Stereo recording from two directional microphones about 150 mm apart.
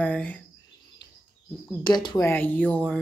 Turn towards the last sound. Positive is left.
turn(degrees=10)  # may be behind; listen again after turning